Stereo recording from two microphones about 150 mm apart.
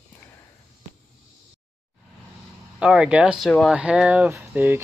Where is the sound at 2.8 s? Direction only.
5° right (ahead or behind).